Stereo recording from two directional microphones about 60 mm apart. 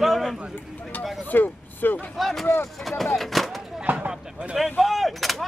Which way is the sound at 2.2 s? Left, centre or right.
Centre.